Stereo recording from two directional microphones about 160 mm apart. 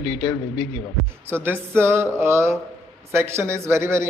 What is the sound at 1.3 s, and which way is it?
A man's voice, 15° right (ahead or behind).